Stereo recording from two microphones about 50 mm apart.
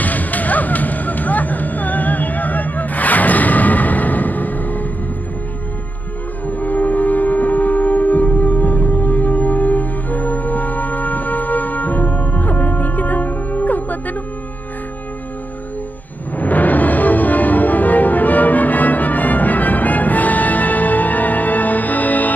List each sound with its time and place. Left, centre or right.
0.0 s a sound: left
6.4 s music: left
16.3 s music: left